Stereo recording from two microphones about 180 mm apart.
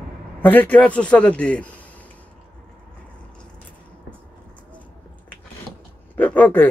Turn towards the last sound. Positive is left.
turn(degrees=10)  # may be behind; listen again after turning